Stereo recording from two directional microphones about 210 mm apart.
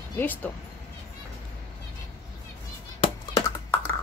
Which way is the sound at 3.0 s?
15° left (ahead or behind).